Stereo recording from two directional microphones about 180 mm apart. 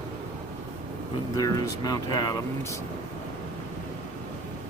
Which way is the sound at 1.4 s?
20° left (ahead or behind).